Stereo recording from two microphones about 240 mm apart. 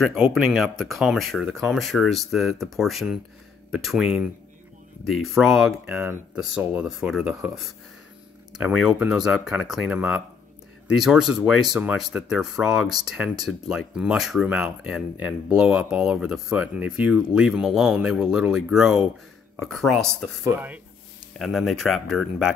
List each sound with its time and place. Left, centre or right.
0.0 s speech: centre
8.8 s speech: centre
21.4 s speech: centre